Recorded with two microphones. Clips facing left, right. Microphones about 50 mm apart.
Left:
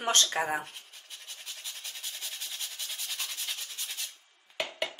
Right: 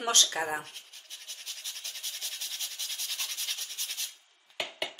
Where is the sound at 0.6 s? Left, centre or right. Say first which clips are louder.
Left 2 dB; centre.